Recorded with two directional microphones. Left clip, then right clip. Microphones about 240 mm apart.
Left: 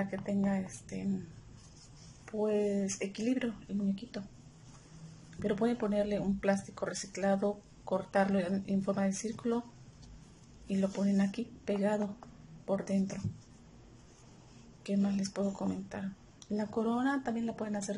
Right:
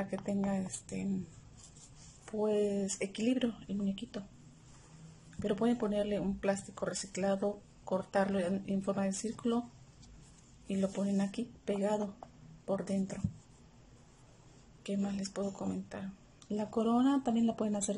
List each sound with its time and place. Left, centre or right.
0.1 s speech: centre
2.2 s speech: centre
5.4 s speech: centre
10.7 s speech: centre
14.8 s speech: centre
17.2 s speech: centre